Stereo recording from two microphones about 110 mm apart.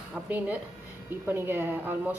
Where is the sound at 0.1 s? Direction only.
15° right (ahead or behind).